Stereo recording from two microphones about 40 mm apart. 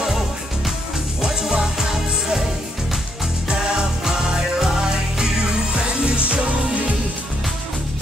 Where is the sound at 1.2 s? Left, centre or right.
Centre.